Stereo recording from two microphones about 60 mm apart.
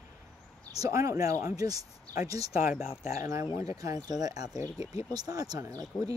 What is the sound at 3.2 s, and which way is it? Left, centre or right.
Speech, right.